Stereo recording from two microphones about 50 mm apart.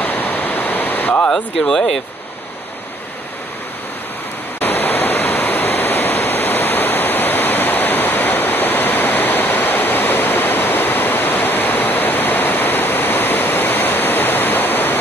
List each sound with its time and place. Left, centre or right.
0.0 s waterfall: left
1.3 s speech: centre
4.6 s waterfall: left